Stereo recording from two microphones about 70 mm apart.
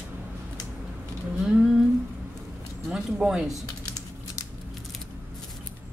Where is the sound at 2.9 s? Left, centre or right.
Centre.